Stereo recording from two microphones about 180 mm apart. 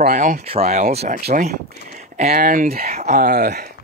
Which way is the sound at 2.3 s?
50° right (ahead or behind).